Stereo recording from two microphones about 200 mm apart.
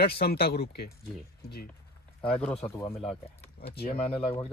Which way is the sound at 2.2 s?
5° left (ahead or behind).